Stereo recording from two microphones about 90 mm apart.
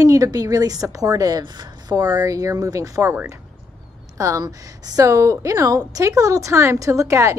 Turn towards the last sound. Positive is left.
turn(degrees=-30)  # may be behind; listen again after turning